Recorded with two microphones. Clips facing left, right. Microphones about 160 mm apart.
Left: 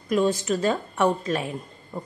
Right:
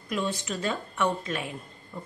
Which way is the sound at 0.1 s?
40° left (ahead or behind).